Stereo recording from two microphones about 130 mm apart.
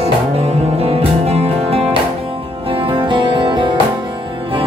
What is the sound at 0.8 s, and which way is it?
Music, 50° right (ahead or behind).